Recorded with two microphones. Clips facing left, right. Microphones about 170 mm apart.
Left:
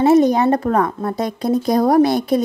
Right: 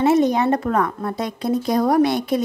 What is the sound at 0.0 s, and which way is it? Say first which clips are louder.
Speech: left 4 dB; 40° left (ahead or behind).